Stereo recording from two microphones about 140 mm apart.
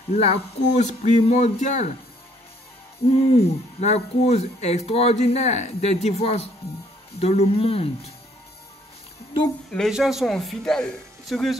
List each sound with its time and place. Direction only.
0.1 s speech: 50° left (ahead or behind)
3.3 s speech: 50° left (ahead or behind)
9.7 s speech: centre (ahead or behind)